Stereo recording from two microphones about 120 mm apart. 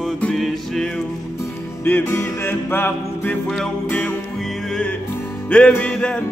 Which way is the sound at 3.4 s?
5° left (ahead or behind).